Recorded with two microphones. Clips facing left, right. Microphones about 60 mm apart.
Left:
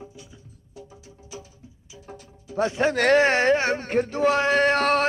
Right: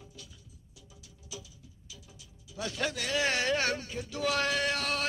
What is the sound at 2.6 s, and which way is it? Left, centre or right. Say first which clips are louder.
Speech: left 10 dB; left.